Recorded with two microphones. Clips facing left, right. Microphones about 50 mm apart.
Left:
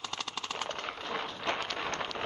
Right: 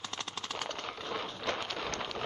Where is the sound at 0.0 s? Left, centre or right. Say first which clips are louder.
Left 2 dB; right.